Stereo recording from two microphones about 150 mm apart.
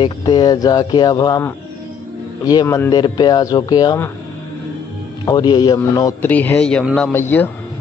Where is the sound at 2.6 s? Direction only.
15° left (ahead or behind).